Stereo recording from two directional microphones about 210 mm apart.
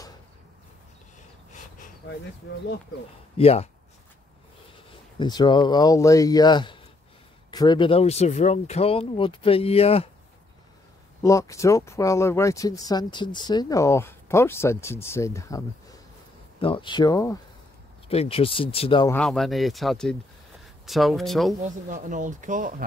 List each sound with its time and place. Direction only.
2.0 s speech: 65° left (ahead or behind)
3.3 s speech: 30° left (ahead or behind)
5.2 s speech: 20° left (ahead or behind)
11.2 s speech: 15° left (ahead or behind)
18.0 s speech: 30° left (ahead or behind)
19.1 s speech: centre (ahead or behind)
21.6 s speech: 40° right (ahead or behind)